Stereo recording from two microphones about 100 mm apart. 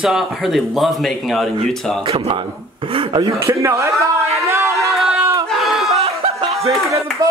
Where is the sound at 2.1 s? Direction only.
80° right.